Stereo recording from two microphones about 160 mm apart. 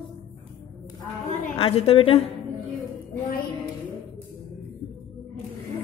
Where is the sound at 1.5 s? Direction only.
35° left (ahead or behind).